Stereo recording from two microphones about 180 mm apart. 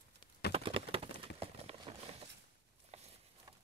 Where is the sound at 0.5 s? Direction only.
30° right (ahead or behind).